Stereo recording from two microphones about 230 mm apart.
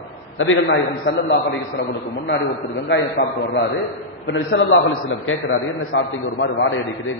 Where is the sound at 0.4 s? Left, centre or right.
Left.